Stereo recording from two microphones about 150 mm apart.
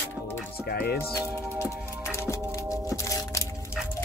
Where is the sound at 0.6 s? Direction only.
90° left.